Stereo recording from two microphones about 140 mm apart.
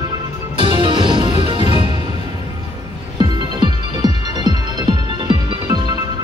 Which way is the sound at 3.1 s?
30° right (ahead or behind).